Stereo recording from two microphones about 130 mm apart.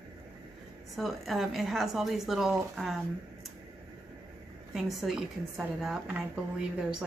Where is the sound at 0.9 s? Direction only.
Centre (ahead or behind).